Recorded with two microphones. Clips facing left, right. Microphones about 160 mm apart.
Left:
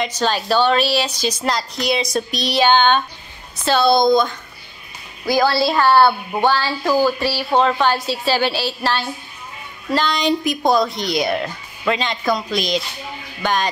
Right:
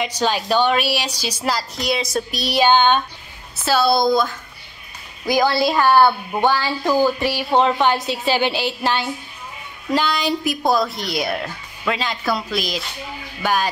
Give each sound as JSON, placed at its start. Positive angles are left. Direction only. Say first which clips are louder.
{"t": 0.0, "sound": "a woman's voice", "louder": "left 1 dB", "side_deg": -10}
{"t": 5.2, "sound": "a woman's voice", "louder": "left 1 dB", "side_deg": -20}